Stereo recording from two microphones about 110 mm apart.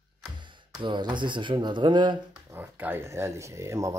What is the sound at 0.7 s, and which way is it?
Speech, 45° right (ahead or behind).